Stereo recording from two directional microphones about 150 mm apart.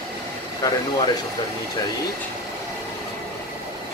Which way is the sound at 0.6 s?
20° left (ahead or behind).